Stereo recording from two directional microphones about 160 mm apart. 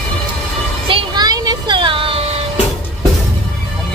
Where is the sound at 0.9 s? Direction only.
25° right (ahead or behind).